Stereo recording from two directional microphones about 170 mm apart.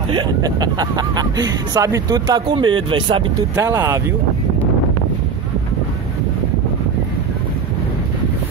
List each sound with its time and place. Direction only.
0.1 s speech: 25° right (ahead or behind)
3.5 s speech: 15° right (ahead or behind)